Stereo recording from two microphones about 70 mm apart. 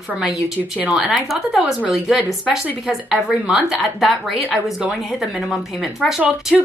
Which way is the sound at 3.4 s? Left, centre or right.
Centre.